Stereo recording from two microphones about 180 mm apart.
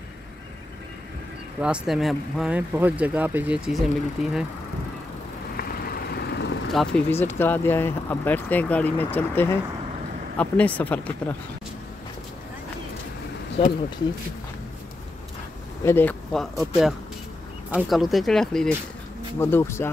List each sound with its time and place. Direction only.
1.6 s speech: 5° right (ahead or behind)
5.6 s vehicle: 55° left (ahead or behind)
6.7 s speech: centre (ahead or behind)
7.1 s speech: 10° left (ahead or behind)
15.8 s speech: 10° left (ahead or behind)
19.4 s speech: 15° left (ahead or behind)